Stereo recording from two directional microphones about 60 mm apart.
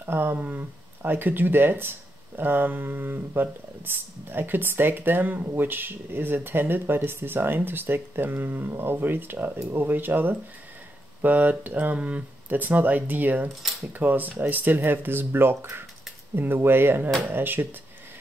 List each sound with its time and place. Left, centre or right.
0.0 s speech: right
0.4 s speech: right